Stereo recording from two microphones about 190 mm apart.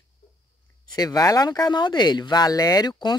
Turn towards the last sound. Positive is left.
turn(degrees=20)  # may be behind; listen again after turning